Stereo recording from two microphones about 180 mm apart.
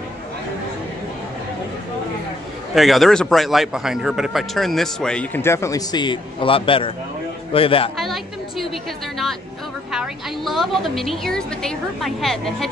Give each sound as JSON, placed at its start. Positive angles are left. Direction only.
{"t": 2.7, "sound": "a man's voice", "side_deg": 0}
{"t": 8.0, "sound": "a sound", "side_deg": 0}
{"t": 9.9, "sound": "a man's voice", "side_deg": 0}